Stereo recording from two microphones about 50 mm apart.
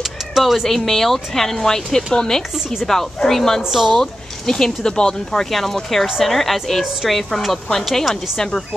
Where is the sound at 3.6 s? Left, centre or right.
Centre.